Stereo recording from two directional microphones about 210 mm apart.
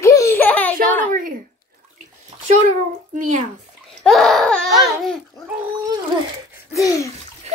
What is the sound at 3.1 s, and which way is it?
Speech, 35° right (ahead or behind).